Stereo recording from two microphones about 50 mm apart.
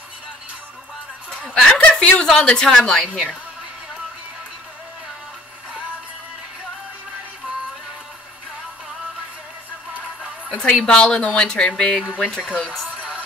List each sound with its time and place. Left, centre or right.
1.4 s snicker: centre
1.8 s chuckle: left
2.2 s speech: centre
10.6 s speech: centre
12.9 s music: right